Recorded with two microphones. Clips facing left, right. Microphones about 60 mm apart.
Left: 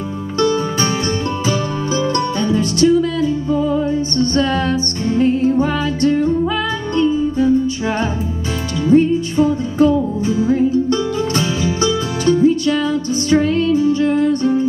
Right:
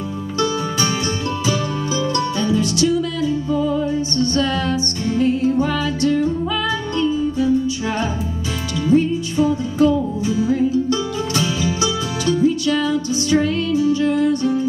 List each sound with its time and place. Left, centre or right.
0.4 s music: left